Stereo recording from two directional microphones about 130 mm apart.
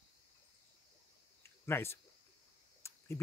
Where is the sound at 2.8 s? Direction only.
20° left (ahead or behind).